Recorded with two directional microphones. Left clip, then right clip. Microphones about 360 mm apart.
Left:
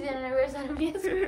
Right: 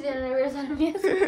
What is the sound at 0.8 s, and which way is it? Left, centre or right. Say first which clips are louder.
Speech: right 5 dB; centre.